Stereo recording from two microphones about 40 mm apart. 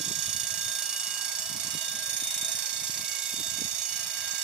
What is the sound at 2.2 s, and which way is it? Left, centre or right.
Alarm, centre.